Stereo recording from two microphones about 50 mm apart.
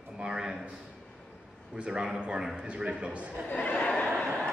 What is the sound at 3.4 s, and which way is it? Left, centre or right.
Speech, left.